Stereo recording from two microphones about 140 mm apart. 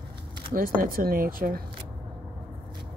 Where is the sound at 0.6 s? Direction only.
90° right.